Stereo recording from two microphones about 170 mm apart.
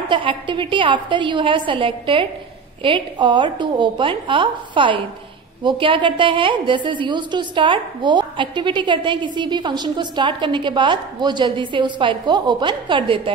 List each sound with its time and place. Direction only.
0.1 s a woman's voice: 30° right (ahead or behind)